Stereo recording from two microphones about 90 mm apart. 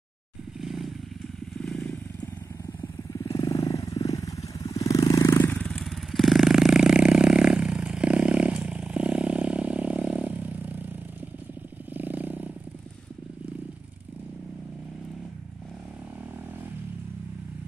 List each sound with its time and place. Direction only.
0.6 s vehicle: centre (ahead or behind)
1.6 s motorcycle: 10° left (ahead or behind)
3.1 s vehicle: 40° left (ahead or behind)
5.6 s motorcycle: 10° left (ahead or behind)
5.9 s vehicle: centre (ahead or behind); by 12.4 s 20° right (ahead or behind)